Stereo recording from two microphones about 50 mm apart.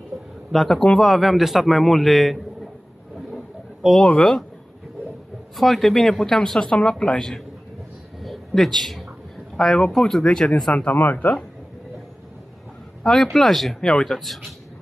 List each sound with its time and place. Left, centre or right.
0.5 s a man's voice: centre
4.0 s speech: centre
5.6 s a man's voice: centre
6.7 s speech: centre
7.2 s speech: centre
8.2 s a sound: centre
9.6 s a man's voice: centre
10.2 s speech: centre
10.7 s speech: left
11.0 s speech: left
13.0 s a man's voice: centre